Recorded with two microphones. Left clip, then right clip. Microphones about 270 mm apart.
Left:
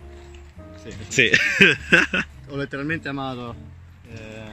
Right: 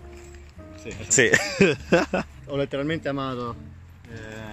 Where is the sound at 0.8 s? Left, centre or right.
Right.